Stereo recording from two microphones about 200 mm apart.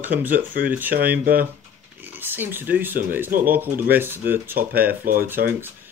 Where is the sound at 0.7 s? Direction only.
10° right (ahead or behind).